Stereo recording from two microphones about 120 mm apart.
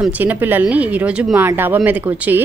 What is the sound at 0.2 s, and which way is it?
A woman's voice, 15° right (ahead or behind).